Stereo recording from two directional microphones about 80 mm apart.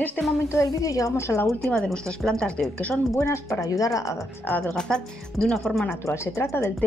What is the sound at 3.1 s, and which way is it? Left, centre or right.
Speech, left.